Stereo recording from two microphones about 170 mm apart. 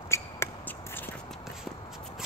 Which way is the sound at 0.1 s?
15° left (ahead or behind).